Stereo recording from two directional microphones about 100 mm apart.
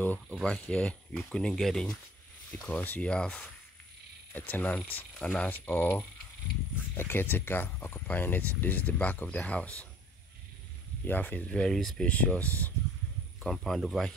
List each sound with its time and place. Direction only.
0.0 s speech: 15° left (ahead or behind)
2.6 s speech: 15° left (ahead or behind)
11.1 s speech: 15° left (ahead or behind)
13.4 s speech: 5° left (ahead or behind)